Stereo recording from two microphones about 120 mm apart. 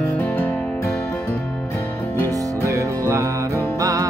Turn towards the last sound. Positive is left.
turn(degrees=-30)  # may be behind; listen again after turning